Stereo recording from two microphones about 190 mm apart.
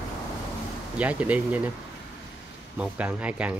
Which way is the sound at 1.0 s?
5° right (ahead or behind).